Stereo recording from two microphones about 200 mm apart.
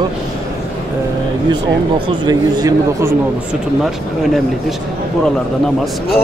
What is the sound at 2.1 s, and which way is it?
A man's voice, 20° right (ahead or behind).